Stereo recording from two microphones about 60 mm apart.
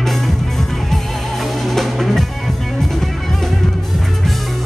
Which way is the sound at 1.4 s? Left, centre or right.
Centre.